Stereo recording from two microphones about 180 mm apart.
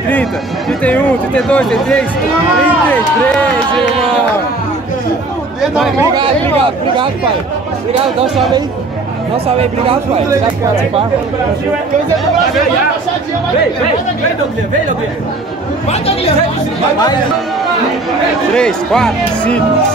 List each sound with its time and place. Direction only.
0.1 s speech: 5° left (ahead or behind)
9.6 s speech: 35° right (ahead or behind)
18.5 s speech: 5° left (ahead or behind)